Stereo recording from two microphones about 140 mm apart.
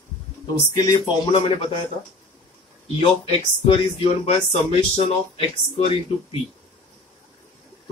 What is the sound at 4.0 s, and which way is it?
Speech, 45° left (ahead or behind).